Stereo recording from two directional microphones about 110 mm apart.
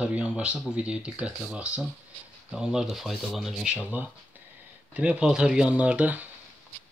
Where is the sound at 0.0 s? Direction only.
10° right (ahead or behind).